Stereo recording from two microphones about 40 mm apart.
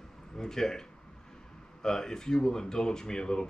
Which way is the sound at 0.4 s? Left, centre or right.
Centre.